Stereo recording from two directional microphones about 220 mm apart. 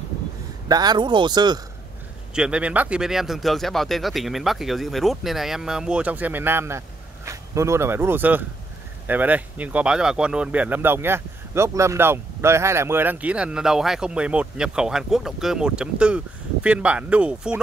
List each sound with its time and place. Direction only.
0.7 s speech: 20° right (ahead or behind)
2.3 s speech: 5° right (ahead or behind)